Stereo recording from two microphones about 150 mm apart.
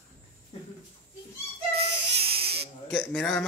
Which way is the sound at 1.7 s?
40° right (ahead or behind).